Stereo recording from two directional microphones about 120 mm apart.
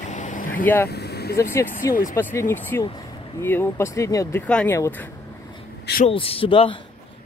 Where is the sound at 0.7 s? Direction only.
15° left (ahead or behind).